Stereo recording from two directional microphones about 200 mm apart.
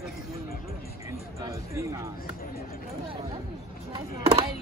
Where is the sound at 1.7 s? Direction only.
15° right (ahead or behind).